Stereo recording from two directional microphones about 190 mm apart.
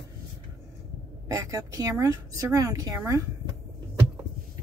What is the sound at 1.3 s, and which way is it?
Speech, 15° right (ahead or behind).